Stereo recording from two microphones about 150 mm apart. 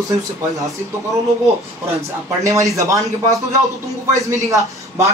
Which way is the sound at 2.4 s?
20° right (ahead or behind).